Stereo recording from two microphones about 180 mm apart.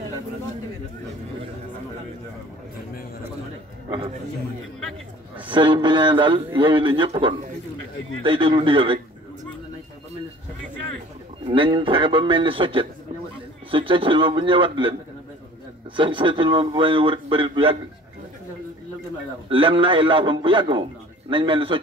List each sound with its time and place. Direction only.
5.5 s a man's voice: 25° right (ahead or behind)
11.4 s a man's voice: 25° right (ahead or behind)
16.0 s a man's voice: 25° right (ahead or behind)
19.5 s a man's voice: 30° right (ahead or behind)